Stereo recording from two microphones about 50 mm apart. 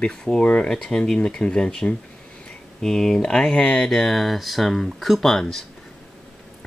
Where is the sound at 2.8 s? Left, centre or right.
Centre.